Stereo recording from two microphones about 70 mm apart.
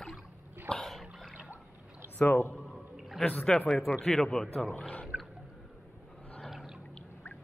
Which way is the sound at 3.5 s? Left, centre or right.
Centre.